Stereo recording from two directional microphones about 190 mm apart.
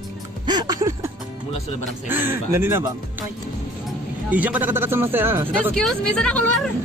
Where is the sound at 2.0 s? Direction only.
10° right (ahead or behind).